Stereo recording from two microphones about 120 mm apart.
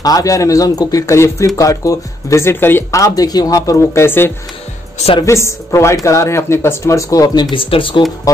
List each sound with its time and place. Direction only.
0.0 s speech: 30° left (ahead or behind)
7.5 s speech: 45° left (ahead or behind)